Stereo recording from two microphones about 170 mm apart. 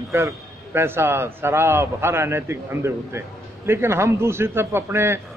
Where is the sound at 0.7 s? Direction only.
15° right (ahead or behind).